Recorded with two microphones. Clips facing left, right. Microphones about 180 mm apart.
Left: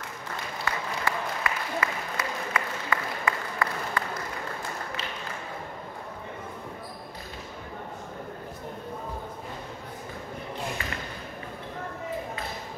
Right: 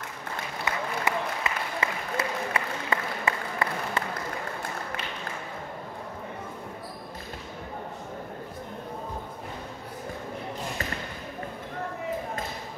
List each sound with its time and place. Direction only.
0.7 s applause: 20° right (ahead or behind)